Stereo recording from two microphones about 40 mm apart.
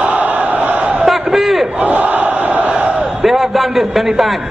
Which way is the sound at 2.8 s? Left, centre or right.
Right.